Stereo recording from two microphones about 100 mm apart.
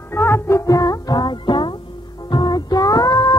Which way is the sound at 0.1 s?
25° left (ahead or behind).